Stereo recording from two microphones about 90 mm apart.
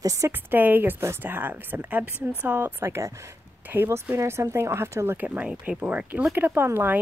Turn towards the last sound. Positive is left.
turn(degrees=-25)  # may be behind; listen again after turning